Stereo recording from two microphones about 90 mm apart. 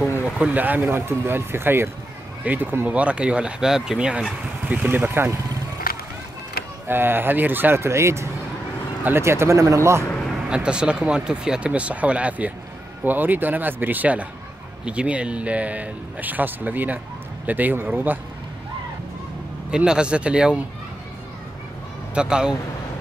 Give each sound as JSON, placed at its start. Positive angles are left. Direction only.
{"t": 0.4, "sound": "speech", "side_deg": -15}
{"t": 6.9, "sound": "speech", "side_deg": -25}
{"t": 10.3, "sound": "speech", "side_deg": -10}
{"t": 19.7, "sound": "speech", "side_deg": -10}
{"t": 22.1, "sound": "speech", "side_deg": -10}